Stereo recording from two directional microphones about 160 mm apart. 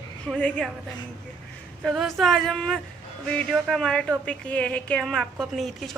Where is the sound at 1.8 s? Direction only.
Centre (ahead or behind).